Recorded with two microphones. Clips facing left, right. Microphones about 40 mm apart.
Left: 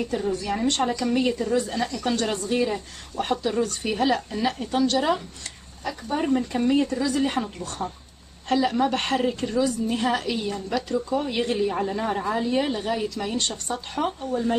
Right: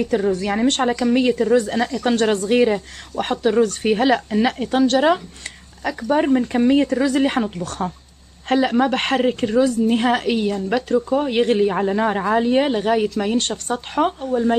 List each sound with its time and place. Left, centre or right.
0.1 s speech: right
5.9 s speech: right
6.2 s speech: right
7.6 s speech: right
11.0 s speech: right